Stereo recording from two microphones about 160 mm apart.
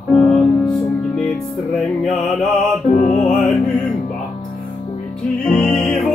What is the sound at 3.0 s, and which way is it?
Music, 50° left (ahead or behind).